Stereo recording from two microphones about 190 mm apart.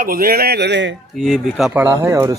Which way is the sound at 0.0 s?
50° right (ahead or behind).